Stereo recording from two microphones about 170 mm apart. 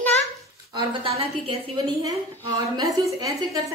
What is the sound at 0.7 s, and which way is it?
Speech, 35° right (ahead or behind).